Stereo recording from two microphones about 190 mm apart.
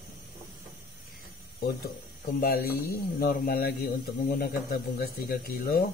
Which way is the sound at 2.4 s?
50° left (ahead or behind).